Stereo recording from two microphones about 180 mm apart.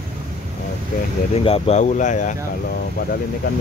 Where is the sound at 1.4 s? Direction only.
35° left (ahead or behind).